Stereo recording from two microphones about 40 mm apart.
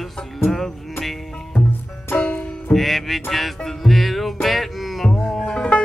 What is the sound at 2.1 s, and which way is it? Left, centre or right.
Music, left.